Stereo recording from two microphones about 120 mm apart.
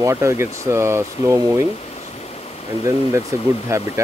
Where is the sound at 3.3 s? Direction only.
25° right (ahead or behind).